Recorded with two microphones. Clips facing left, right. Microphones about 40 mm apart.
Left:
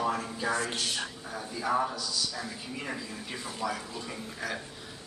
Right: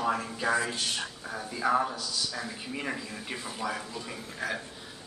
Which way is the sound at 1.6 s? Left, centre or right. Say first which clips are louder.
Right 2 dB; right.